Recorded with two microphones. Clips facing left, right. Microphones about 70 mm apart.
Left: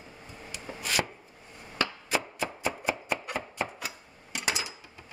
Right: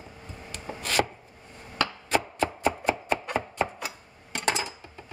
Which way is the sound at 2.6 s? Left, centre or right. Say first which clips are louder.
Right 3 dB; centre.